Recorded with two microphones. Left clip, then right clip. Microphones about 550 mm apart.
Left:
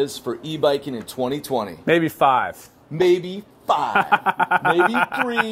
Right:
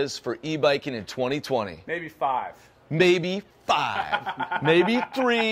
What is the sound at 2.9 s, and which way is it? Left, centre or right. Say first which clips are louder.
Speech: left 2 dB; right.